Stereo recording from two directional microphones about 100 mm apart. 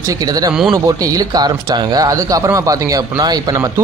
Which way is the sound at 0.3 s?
40° right (ahead or behind).